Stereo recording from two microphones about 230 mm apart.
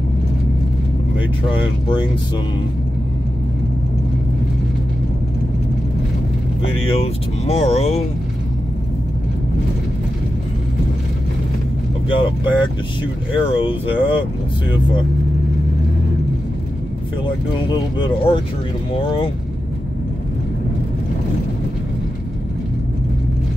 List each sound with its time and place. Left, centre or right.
7.4 s speech: left
12.1 s speech: left
17.9 s speech: centre